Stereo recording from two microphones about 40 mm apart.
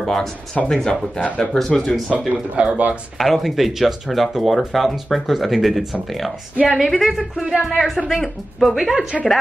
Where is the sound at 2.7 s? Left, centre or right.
Right.